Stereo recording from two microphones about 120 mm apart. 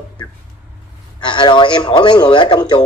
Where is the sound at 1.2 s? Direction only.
45° left (ahead or behind).